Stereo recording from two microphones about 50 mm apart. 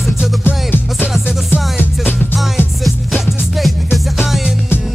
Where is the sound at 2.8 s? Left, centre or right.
Centre.